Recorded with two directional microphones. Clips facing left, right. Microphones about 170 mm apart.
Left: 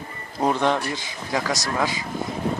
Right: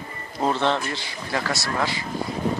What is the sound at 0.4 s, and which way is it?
Speech, 10° left (ahead or behind).